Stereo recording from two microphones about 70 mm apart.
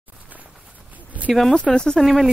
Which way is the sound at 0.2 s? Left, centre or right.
Right.